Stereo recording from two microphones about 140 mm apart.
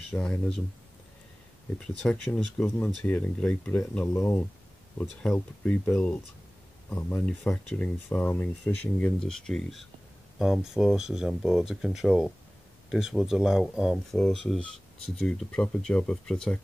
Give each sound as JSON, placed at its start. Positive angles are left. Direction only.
{"t": 0.1, "sound": "speech", "side_deg": 5}
{"t": 1.8, "sound": "speech", "side_deg": 5}
{"t": 4.1, "sound": "speech", "side_deg": 20}
{"t": 5.2, "sound": "speech", "side_deg": 10}